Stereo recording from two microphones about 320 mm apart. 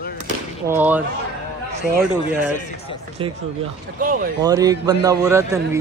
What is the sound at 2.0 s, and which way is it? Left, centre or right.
Speech, centre.